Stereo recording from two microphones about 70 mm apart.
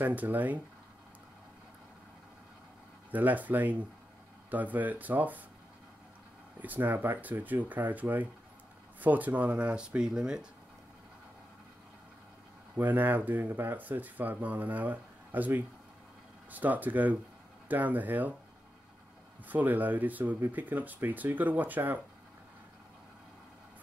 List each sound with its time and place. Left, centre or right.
0.0 s speech: right
3.1 s speech: right
6.6 s speech: right
12.7 s speech: right
19.4 s speech: right